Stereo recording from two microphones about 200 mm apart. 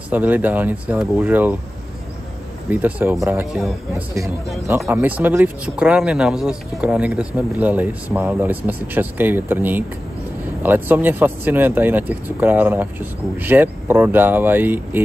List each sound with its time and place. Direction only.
0.1 s speech: 10° right (ahead or behind)
2.7 s speech: 10° right (ahead or behind)
4.6 s speech: 10° right (ahead or behind)